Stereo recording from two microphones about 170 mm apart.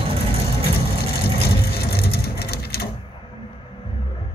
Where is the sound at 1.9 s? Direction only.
70° left (ahead or behind).